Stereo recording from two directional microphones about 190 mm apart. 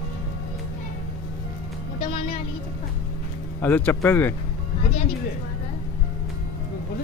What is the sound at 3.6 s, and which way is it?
Speech, 10° left (ahead or behind).